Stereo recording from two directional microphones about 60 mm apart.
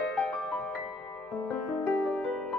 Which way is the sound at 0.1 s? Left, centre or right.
Centre.